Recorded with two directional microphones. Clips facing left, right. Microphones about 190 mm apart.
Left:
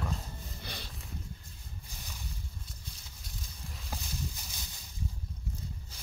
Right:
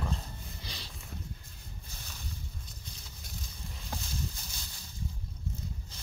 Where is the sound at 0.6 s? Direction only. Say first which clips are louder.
Left 4 dB; 55° left (ahead or behind).